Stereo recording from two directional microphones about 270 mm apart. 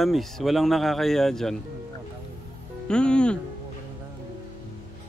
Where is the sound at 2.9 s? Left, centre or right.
Centre.